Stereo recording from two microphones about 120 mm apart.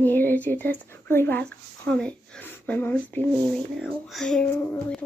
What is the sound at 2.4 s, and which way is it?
Speech, 15° left (ahead or behind).